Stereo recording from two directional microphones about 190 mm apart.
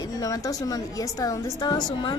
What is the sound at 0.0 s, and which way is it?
A woman's voice, 20° left (ahead or behind).